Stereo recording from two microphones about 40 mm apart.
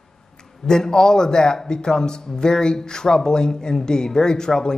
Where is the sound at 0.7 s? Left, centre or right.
Centre.